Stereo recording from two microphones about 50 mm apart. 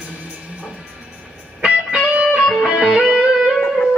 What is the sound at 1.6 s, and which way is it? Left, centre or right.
Music, right.